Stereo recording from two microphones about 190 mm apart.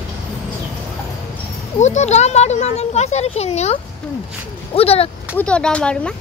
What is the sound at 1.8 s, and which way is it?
Speech, 35° left (ahead or behind).